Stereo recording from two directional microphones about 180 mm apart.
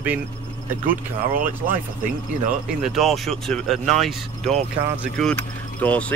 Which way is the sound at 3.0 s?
Centre (ahead or behind).